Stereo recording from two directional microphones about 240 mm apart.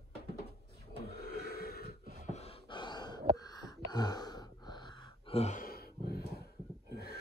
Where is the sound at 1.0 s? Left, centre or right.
Left.